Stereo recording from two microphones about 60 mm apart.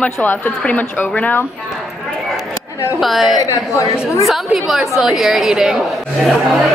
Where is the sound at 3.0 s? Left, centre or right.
Centre.